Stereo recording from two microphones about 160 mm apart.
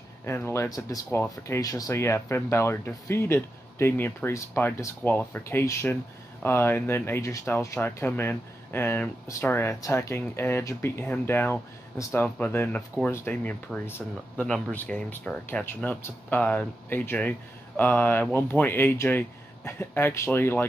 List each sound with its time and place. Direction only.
0.2 s speech: 15° left (ahead or behind)